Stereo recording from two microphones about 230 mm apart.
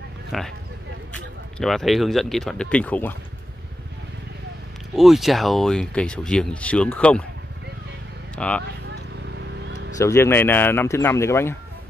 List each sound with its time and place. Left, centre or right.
0.3 s speech: centre
4.9 s speech: centre
8.4 s speech: centre
8.9 s a sound: right
9.9 s speech: centre